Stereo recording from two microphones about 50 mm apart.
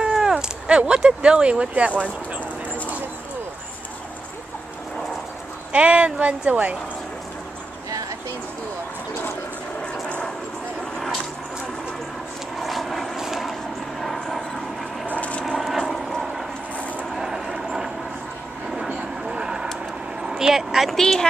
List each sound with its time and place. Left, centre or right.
0.0 s a sound: centre
1.9 s speech: left
5.7 s speech: right
10.0 s a sound: left
12.5 s vehicle: centre
15.1 s vehicle: left
15.4 s vehicle: centre
15.9 s a sound: centre
17.1 s vehicle: centre
19.2 s vehicle: centre
20.2 s speech: centre
20.9 s a woman's voice: centre